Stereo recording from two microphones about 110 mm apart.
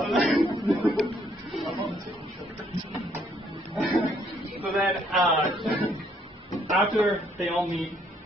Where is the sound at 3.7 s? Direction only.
Centre (ahead or behind).